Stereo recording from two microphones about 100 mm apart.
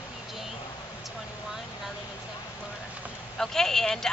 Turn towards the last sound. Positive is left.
turn(degrees=5)  # may be behind; listen again after turning